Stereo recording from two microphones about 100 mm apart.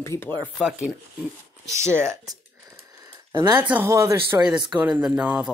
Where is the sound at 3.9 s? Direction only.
30° right (ahead or behind).